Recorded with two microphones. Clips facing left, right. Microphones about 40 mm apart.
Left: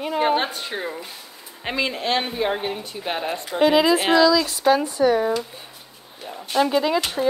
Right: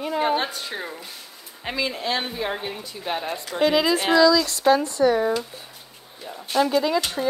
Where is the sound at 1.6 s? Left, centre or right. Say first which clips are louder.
Left 2 dB; left.